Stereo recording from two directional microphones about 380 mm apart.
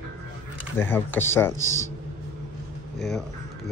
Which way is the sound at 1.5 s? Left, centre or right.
Left.